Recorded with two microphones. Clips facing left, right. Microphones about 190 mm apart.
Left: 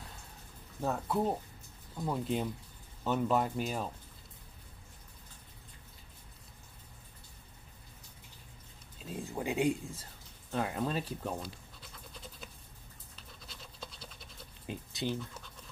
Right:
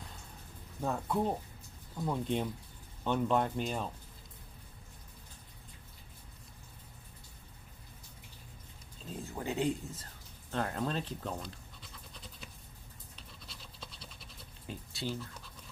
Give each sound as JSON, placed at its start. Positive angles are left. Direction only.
{"t": 0.7, "sound": "speech", "side_deg": 5}
{"t": 9.0, "sound": "speech", "side_deg": 15}
{"t": 13.5, "sound": "scratch", "side_deg": 0}
{"t": 14.7, "sound": "a sound", "side_deg": 20}